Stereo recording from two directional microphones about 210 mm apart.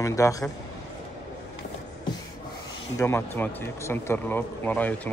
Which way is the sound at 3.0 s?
10° left (ahead or behind).